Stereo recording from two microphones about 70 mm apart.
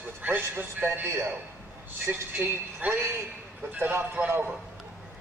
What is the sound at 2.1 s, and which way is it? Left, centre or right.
A man's voice, right.